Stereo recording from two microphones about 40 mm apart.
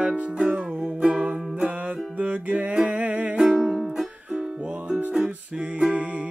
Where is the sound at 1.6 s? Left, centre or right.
Right.